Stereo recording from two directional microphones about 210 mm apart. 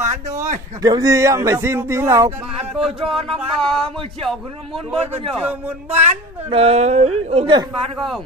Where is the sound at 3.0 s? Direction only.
Centre (ahead or behind).